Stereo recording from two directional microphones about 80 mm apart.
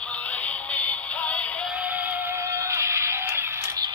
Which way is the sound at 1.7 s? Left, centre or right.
Centre.